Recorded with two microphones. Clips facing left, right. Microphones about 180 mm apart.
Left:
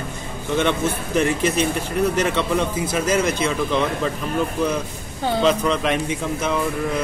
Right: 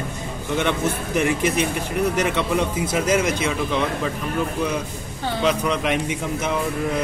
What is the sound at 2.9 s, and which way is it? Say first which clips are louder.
Speech: even; 15° right (ahead or behind).